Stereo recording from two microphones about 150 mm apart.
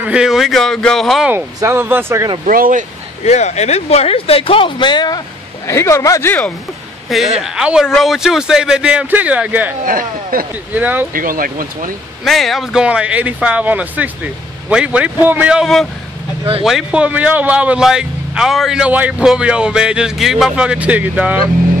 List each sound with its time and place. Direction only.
0.0 s speech: 5° right (ahead or behind)
1.3 s a man's voice: 15° right (ahead or behind)
2.4 s speech: 65° right (ahead or behind)
3.3 s speech: 50° left (ahead or behind); by 5.2 s 30° left (ahead or behind)
5.7 s speech: 20° left (ahead or behind)
7.3 s speech: 5° right (ahead or behind)
9.8 s speech: 65° right (ahead or behind)
10.7 s a man's voice: 10° right (ahead or behind)
11.1 s speech: 70° right (ahead or behind)
12.3 s a man's voice: centre (ahead or behind)